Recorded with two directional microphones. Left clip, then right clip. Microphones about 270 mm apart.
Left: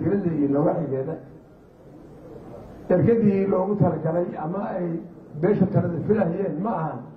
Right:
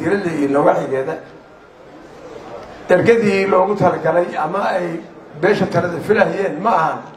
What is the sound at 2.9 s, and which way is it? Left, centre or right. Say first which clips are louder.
A man's voice: right 8 dB; centre.